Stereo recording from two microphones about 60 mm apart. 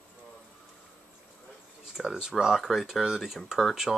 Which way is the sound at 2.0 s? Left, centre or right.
Centre.